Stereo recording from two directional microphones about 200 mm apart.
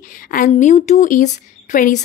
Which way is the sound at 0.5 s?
35° left (ahead or behind).